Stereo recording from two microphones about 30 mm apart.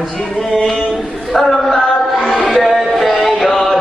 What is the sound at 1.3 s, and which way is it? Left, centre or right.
Chant, centre.